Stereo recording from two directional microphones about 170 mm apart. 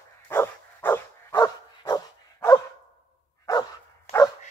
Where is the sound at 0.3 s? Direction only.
15° left (ahead or behind).